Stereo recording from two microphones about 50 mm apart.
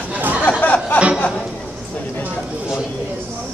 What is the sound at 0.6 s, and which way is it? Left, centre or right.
Music, left.